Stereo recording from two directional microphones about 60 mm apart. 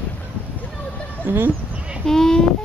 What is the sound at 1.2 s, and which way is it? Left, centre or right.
Speech, right.